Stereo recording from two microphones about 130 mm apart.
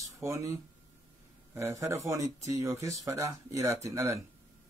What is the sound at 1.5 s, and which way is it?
Speech, 20° right (ahead or behind).